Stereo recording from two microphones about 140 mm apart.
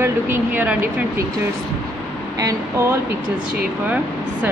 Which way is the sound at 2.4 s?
20° right (ahead or behind).